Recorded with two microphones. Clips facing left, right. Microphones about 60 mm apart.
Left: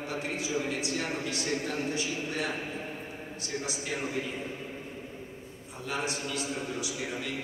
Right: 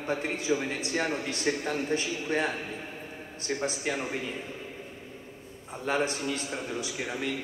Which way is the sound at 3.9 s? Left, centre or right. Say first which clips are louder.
Right 4 dB; right.